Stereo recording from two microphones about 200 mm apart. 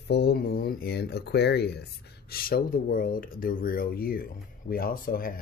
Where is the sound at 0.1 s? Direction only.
55° left (ahead or behind).